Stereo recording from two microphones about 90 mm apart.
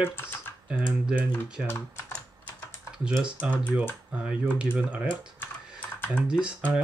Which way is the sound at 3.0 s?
10° right (ahead or behind).